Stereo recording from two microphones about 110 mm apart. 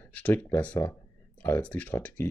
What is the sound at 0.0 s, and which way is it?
Speech, 15° left (ahead or behind).